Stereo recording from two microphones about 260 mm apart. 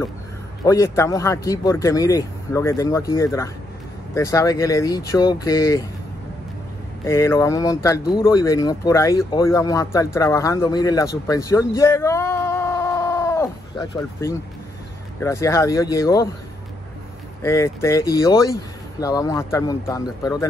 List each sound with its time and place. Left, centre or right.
0.7 s speech: centre
7.1 s speech: centre
11.2 s a sound: centre
15.1 s speech: centre
17.4 s speech: centre